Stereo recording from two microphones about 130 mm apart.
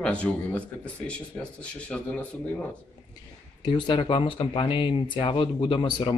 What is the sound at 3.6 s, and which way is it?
Speech, 35° left (ahead or behind).